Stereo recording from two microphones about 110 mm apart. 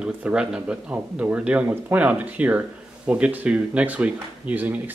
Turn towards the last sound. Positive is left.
turn(degrees=-15)  # may be behind; listen again after turning